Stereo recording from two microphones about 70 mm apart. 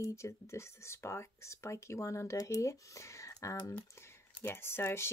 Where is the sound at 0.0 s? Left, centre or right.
Left.